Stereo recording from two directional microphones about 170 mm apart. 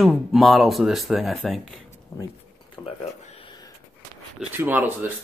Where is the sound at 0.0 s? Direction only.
Centre (ahead or behind).